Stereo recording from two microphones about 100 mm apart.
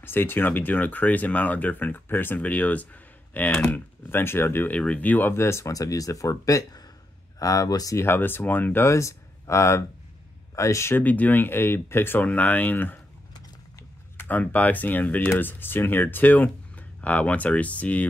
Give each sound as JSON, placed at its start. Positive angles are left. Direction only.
{"t": 0.0, "sound": "speech", "side_deg": 20}
{"t": 14.1, "sound": "speech", "side_deg": 15}